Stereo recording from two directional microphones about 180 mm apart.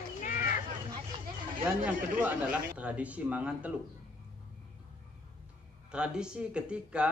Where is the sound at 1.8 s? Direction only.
5° right (ahead or behind).